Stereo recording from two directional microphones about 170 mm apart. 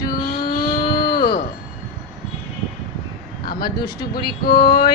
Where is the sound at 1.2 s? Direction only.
65° left (ahead or behind).